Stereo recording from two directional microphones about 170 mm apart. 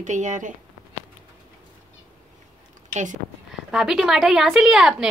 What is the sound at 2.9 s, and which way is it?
Speech, 45° right (ahead or behind).